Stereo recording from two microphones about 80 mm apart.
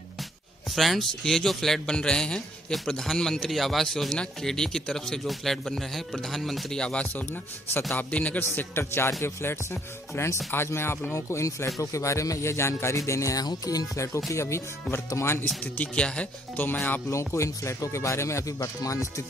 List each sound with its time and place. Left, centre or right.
0.7 s a man's voice: centre
8.5 s a man's voice: left
15.6 s speech: centre
17.1 s speech: left